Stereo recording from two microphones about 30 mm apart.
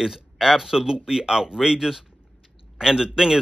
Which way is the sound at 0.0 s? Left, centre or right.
Centre.